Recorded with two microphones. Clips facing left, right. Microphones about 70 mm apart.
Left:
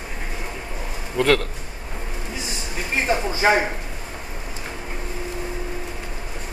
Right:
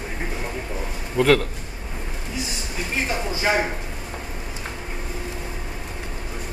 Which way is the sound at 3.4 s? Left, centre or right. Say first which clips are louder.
Left 4 dB; left.